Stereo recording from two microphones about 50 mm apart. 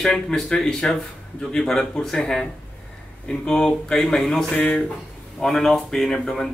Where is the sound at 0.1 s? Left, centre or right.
Centre.